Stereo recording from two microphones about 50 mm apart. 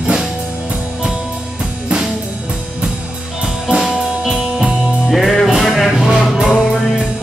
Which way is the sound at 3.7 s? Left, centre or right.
Right.